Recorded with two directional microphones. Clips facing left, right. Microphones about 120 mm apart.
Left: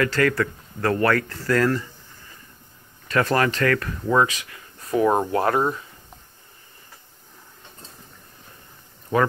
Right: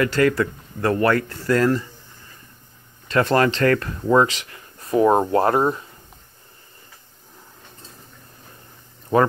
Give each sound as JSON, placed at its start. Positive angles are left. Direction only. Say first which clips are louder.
{"t": 0.0, "sound": "speech", "louder": "right 2 dB", "side_deg": -20}
{"t": 3.1, "sound": "speech", "louder": "right 3 dB", "side_deg": -25}